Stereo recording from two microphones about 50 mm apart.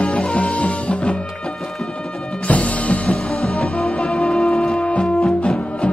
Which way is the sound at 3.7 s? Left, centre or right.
Left.